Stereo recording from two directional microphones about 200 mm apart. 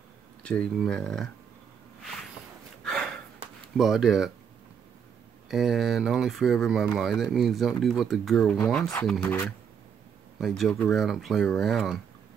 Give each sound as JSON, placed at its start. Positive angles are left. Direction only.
{"t": 0.4, "sound": "speech", "side_deg": 5}
{"t": 2.8, "sound": "a sound", "side_deg": 0}
{"t": 3.7, "sound": "speech", "side_deg": 0}
{"t": 5.5, "sound": "speech", "side_deg": 0}